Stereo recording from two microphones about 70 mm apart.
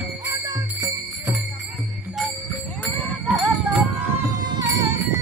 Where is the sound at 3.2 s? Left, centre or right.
Centre.